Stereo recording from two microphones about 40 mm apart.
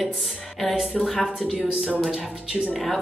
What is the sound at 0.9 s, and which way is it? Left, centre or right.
Speech, centre.